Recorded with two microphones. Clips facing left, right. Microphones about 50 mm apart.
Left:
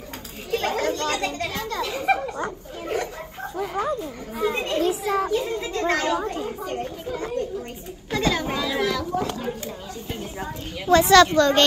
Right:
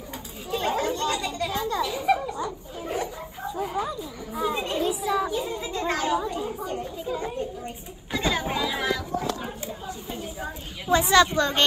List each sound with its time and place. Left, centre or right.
0.5 s chatter: left
8.1 s speech: centre
10.9 s a woman's voice: centre